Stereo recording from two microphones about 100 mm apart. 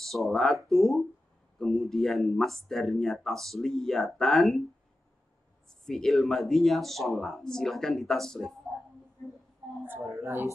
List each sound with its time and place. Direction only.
0.0 s speech: centre (ahead or behind)
5.7 s speech: 5° left (ahead or behind)
10.1 s a woman's voice: 25° right (ahead or behind)